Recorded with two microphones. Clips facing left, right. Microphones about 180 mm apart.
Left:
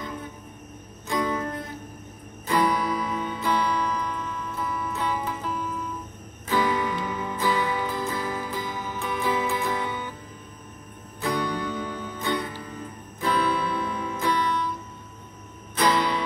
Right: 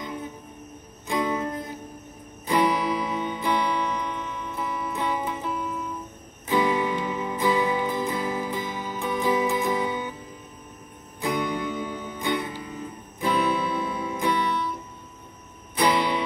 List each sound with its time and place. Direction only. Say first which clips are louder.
0.0 s music: right 1 dB; 20° right (ahead or behind)
11.1 s music: right 1 dB; 15° right (ahead or behind)
15.7 s music: right 1 dB; 15° right (ahead or behind)